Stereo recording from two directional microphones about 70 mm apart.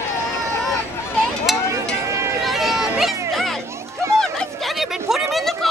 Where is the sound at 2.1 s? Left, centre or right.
Right.